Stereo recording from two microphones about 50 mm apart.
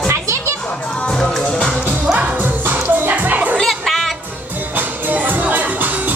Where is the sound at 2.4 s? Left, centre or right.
Right.